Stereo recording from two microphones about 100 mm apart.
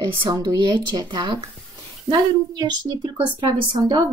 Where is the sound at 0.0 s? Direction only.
40° right (ahead or behind).